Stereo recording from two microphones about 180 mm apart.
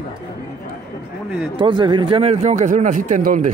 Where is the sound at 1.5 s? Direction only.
25° right (ahead or behind).